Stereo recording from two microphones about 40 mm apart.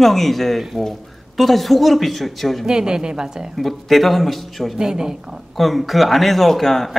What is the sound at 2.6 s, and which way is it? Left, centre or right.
Speech, centre.